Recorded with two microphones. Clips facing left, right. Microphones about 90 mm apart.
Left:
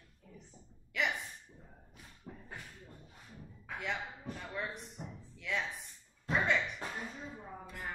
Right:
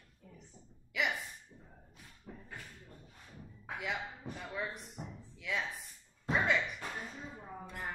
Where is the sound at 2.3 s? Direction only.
10° left (ahead or behind).